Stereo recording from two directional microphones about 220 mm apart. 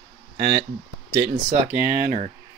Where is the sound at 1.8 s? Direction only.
40° right (ahead or behind).